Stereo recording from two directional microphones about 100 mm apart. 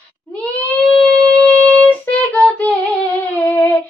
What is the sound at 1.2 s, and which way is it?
Shofar, 15° left (ahead or behind).